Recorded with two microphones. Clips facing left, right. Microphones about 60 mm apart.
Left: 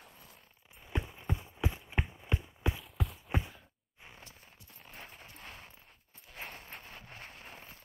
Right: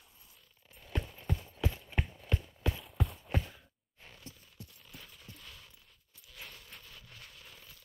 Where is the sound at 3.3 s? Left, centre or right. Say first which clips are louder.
Left 1 dB; centre.